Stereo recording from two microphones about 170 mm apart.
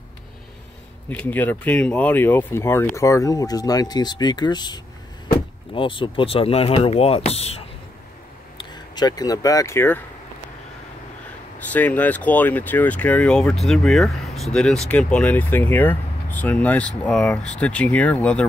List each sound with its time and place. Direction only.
1.1 s speech: 10° left (ahead or behind); by 7.6 s 35° left (ahead or behind)
8.5 s speech: 25° left (ahead or behind)
11.7 s speech: 10° left (ahead or behind)